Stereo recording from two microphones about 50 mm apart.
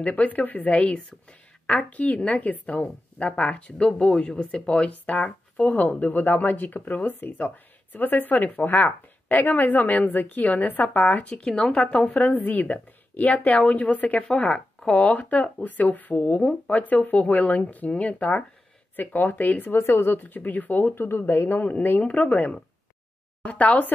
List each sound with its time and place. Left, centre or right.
0.0 s speech: left
19.8 s speech: left
20.1 s speech: left
21.5 s speech: left